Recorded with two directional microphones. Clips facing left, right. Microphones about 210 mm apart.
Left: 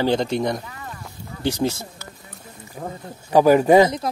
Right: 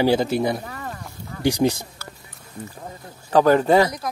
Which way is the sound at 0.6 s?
45° right (ahead or behind).